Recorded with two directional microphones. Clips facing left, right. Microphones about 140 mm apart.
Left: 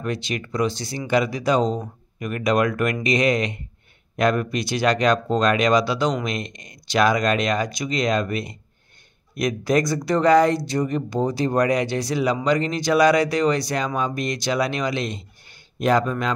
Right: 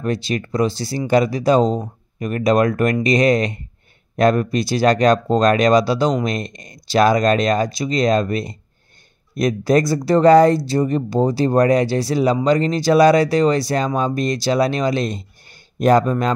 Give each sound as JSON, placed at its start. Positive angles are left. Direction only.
{"t": 0.0, "sound": "speech", "side_deg": -35}